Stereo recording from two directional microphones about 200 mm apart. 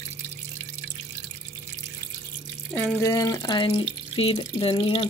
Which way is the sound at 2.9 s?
15° left (ahead or behind).